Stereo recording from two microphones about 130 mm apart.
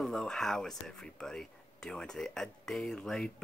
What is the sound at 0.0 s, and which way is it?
Speech, 5° left (ahead or behind).